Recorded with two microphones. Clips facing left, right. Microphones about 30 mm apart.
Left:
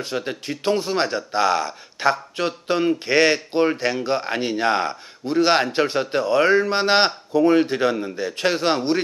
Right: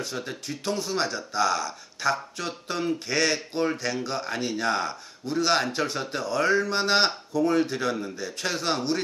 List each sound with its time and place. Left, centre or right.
0.0 s speech: left